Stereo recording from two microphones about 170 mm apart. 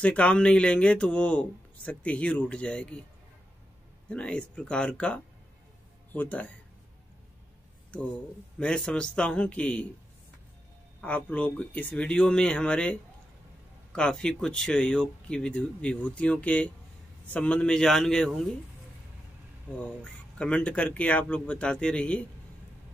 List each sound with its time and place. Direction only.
0.0 s speech: 10° left (ahead or behind)
4.1 s speech: 5° left (ahead or behind)
8.5 s speech: 5° left (ahead or behind)
11.0 s speech: 10° left (ahead or behind)
20.0 s speech: 5° left (ahead or behind)